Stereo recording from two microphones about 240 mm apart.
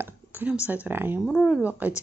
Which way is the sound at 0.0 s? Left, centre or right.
Centre.